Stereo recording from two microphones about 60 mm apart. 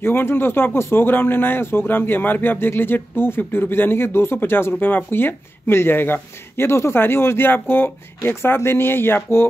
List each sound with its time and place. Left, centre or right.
0.0 s a man's voice: left